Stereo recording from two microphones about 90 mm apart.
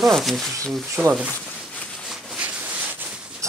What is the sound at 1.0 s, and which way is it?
Speech, 10° right (ahead or behind).